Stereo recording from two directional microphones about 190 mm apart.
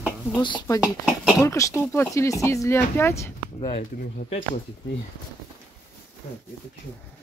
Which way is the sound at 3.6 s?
30° left (ahead or behind).